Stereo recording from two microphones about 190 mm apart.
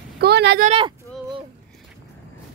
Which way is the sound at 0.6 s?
30° right (ahead or behind).